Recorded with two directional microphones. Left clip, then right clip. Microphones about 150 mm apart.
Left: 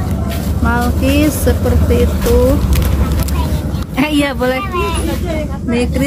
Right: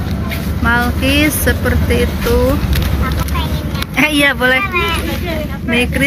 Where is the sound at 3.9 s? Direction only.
20° left (ahead or behind).